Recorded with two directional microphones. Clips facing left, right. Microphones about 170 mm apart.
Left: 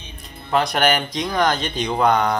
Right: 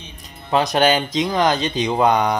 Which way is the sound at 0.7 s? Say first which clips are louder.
Right 3 dB; 20° right (ahead or behind).